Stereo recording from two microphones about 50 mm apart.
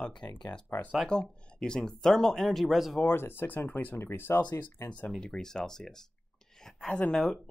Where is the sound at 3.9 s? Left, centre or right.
Left.